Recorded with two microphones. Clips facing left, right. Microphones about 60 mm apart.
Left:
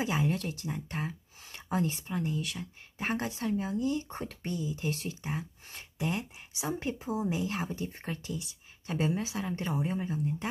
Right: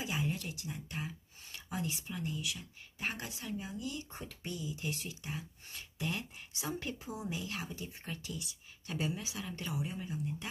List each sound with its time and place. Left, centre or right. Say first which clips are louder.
0.0 s speech: left 7 dB; left
3.8 s speech: left 10 dB; left
5.9 s speech: left 5 dB; left